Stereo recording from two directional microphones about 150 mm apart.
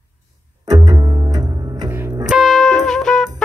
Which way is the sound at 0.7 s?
25° right (ahead or behind).